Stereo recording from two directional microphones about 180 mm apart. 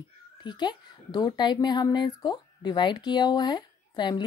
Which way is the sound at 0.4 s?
25° left (ahead or behind).